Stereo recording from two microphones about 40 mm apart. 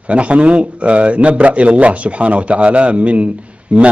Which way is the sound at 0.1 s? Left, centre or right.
Right.